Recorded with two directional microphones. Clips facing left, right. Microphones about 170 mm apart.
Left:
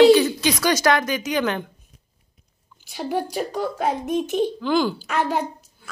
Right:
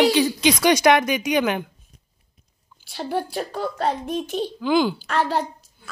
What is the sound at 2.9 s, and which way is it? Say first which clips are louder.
Speech: left 1 dB; 10° left (ahead or behind).